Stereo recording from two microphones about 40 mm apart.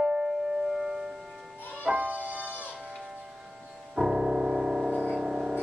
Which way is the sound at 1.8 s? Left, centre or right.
Right.